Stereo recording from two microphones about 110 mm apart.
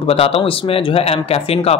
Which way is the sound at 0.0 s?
60° left (ahead or behind).